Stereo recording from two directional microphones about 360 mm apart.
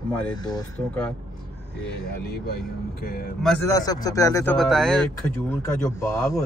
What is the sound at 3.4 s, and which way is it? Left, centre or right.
Speech, centre.